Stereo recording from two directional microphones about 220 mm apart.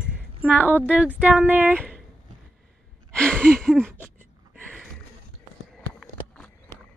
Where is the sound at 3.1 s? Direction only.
5° left (ahead or behind).